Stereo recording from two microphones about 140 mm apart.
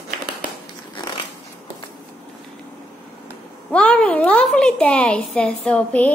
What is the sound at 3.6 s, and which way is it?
A woman's voice, 10° left (ahead or behind).